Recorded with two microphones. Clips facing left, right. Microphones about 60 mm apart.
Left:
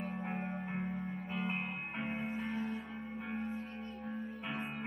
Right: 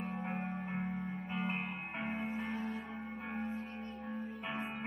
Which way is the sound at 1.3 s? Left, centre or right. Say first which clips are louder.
Even; centre.